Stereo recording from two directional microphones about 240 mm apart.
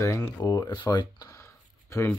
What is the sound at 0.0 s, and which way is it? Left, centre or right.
Speech, centre.